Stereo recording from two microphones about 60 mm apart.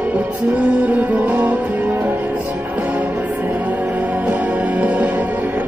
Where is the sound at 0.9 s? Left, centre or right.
Right.